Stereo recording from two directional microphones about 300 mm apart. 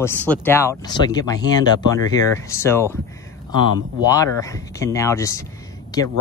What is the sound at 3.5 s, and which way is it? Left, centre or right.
Speech, right.